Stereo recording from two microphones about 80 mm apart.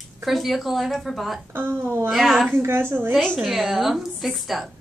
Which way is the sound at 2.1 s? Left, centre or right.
Centre.